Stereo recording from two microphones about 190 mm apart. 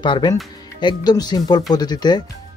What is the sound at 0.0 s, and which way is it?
Speech, 25° left (ahead or behind).